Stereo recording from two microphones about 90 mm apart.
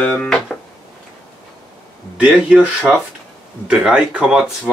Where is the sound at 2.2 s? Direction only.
10° right (ahead or behind).